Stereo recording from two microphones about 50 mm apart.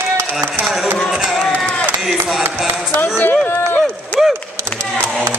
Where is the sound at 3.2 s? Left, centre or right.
Left.